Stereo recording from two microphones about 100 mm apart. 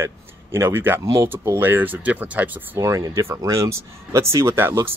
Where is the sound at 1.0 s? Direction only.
35° right (ahead or behind).